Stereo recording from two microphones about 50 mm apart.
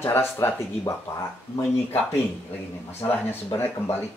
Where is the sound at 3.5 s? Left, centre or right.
Left.